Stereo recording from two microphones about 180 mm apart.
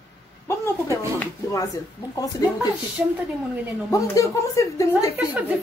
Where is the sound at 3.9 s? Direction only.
20° left (ahead or behind).